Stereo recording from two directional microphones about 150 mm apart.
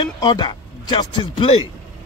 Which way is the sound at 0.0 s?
30° left (ahead or behind).